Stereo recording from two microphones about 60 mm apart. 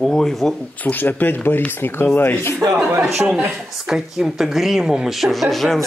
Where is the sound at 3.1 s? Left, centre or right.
Centre.